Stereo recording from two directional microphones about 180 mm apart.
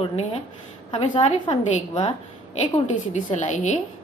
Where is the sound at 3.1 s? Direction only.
40° left (ahead or behind).